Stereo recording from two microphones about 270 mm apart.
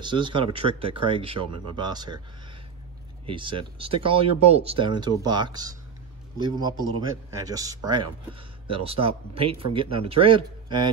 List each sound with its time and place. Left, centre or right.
0.0 s speech: centre
3.3 s a man's voice: centre